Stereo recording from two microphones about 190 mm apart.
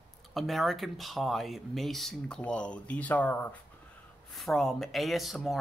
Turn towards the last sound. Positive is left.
turn(degrees=0)  # may be behind; listen again after turning